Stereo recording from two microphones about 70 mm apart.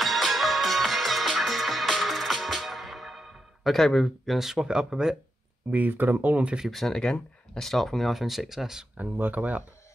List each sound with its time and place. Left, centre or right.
0.0 s music: centre
5.7 s speech: right
6.7 s speech: centre
8.9 s speech: right